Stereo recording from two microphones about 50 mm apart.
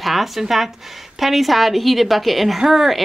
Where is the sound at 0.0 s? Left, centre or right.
Centre.